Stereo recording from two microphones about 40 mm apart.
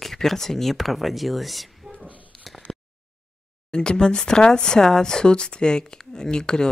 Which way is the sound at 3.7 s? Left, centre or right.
Left.